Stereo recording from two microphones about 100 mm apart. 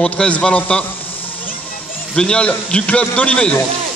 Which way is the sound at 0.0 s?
10° left (ahead or behind).